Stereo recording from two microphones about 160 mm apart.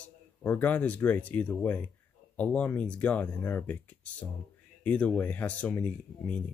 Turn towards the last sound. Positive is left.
turn(degrees=10)  # may be behind; listen again after turning